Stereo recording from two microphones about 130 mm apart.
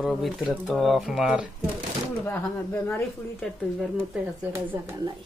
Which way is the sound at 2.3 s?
15° left (ahead or behind).